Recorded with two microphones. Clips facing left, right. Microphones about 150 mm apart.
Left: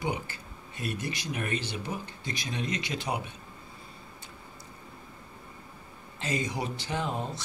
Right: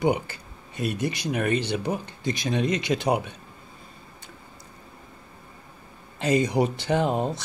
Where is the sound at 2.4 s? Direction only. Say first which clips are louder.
Right 9 dB; 70° right (ahead or behind).